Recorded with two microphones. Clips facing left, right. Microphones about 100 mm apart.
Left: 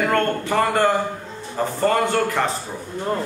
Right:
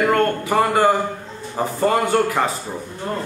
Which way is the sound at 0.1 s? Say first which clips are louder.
Right 2 dB; 10° right (ahead or behind).